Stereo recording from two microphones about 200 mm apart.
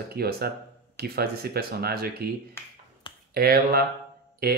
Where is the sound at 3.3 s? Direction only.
50° right (ahead or behind).